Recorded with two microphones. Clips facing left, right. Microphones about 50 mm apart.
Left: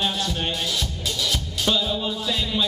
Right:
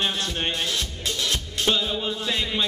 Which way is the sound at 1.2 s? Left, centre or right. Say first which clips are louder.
Even; right.